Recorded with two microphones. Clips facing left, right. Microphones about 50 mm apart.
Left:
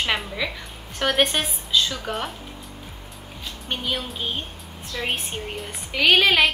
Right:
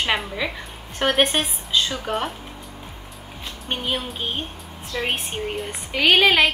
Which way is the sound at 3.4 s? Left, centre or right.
Centre.